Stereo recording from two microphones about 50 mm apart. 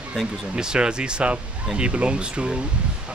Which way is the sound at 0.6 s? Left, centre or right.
Centre.